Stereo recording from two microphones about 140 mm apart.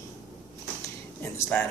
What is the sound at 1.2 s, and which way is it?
Speech, 15° left (ahead or behind).